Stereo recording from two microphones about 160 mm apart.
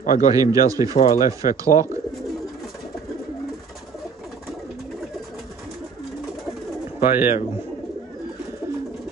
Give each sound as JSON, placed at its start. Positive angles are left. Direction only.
{"t": 0.0, "sound": "a man's voice", "side_deg": 55}
{"t": 0.3, "sound": "a man's voice", "side_deg": -20}
{"t": 0.9, "sound": "speech", "side_deg": 60}
{"t": 1.4, "sound": "a man's voice", "side_deg": -20}
{"t": 7.0, "sound": "speech", "side_deg": -15}